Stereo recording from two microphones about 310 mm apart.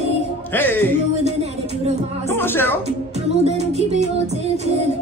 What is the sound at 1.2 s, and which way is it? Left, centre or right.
Music, right.